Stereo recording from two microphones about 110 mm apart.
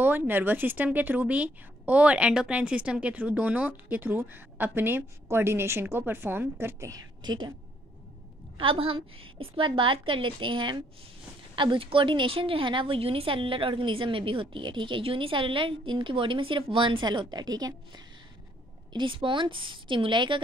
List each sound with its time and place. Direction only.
0.0 s speech: 20° right (ahead or behind)
6.9 s a woman's voice: 45° right (ahead or behind)
8.5 s a woman's voice: 55° right (ahead or behind); by 18.0 s 35° right (ahead or behind)
18.9 s a woman's voice: 50° right (ahead or behind)